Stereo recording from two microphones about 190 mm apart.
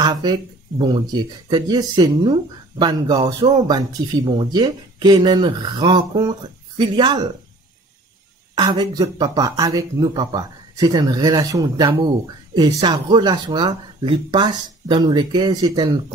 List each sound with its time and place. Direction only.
0.0 s speech: 20° right (ahead or behind)
8.5 s speech: 20° right (ahead or behind)